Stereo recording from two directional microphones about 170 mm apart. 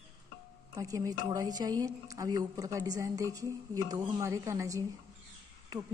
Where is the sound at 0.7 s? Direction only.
20° right (ahead or behind).